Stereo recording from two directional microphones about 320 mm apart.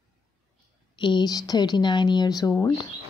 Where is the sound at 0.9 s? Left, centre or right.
Centre.